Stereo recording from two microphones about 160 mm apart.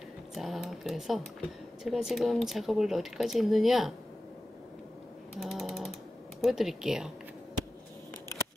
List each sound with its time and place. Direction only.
0.3 s a sound: centre (ahead or behind)
1.9 s speech: centre (ahead or behind)
5.4 s mechanisms: centre (ahead or behind)
6.4 s speech: centre (ahead or behind)